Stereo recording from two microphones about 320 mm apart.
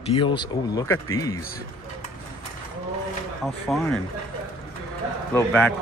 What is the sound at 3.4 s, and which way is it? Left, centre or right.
Speech, centre.